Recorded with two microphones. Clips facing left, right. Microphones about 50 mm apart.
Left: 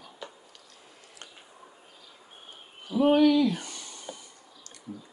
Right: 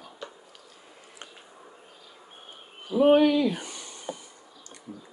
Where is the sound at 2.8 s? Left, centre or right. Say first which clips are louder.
Right 2 dB; centre.